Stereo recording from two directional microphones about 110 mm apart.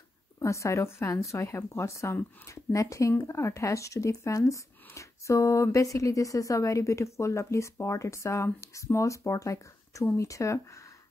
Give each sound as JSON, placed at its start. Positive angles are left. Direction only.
{"t": 0.4, "sound": "speech", "side_deg": 30}